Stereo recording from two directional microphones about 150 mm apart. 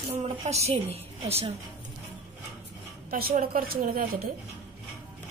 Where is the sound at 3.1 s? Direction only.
80° right.